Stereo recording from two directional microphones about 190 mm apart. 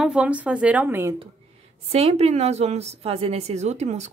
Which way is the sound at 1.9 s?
35° right (ahead or behind).